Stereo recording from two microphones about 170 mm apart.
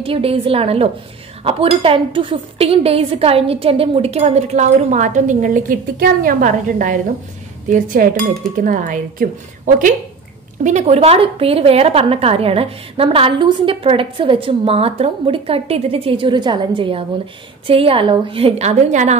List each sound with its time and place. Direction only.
0.0 s a woman's voice: 35° right (ahead or behind); by 7.0 s 50° right (ahead or behind)
7.7 s dishes: 55° right (ahead or behind)
8.5 s speech: 50° right (ahead or behind)
10.6 s a woman's voice: 45° right (ahead or behind)